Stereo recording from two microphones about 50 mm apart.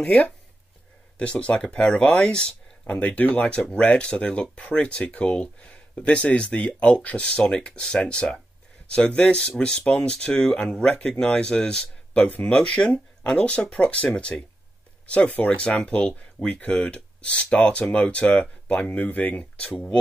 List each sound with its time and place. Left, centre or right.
1.1 s speech: left
3.2 s speech: left
14.3 s speech: left; by 20.0 s centre